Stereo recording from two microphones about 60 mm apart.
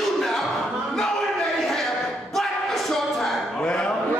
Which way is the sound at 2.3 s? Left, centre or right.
Centre.